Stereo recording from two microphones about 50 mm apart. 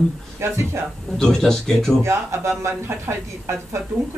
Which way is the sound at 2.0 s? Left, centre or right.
Right.